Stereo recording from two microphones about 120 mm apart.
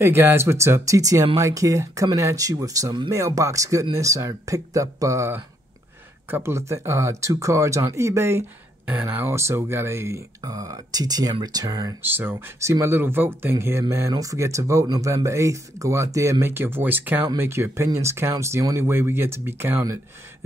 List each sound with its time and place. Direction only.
0.0 s speech: 20° right (ahead or behind)
12.1 s speech: 15° right (ahead or behind)